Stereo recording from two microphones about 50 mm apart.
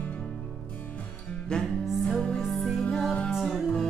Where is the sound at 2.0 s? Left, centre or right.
Centre.